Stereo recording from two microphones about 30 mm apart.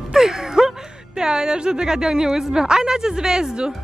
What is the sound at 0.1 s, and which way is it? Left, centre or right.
A woman's voice, centre.